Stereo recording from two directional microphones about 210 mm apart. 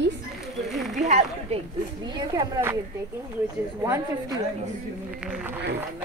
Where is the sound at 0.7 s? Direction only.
Centre (ahead or behind).